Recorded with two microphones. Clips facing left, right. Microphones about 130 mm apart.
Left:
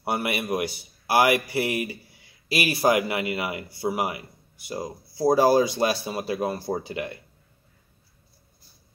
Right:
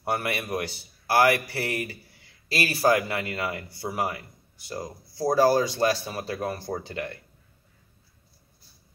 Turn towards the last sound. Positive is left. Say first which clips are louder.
# left 3 dB
turn(degrees=15)  # may be behind; listen again after turning